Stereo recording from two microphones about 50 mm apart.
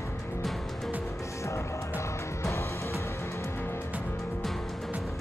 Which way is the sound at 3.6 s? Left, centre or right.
Left.